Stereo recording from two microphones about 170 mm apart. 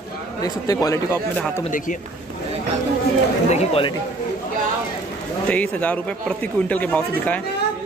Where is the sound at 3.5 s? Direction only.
35° left (ahead or behind).